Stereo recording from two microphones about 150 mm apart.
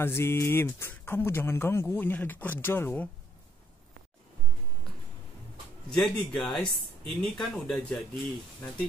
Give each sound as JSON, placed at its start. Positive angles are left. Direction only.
{"t": 0.0, "sound": "speech", "side_deg": 15}
{"t": 5.9, "sound": "speech", "side_deg": 5}